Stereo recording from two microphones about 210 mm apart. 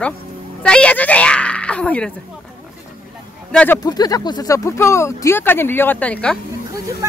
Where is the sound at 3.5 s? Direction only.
10° left (ahead or behind).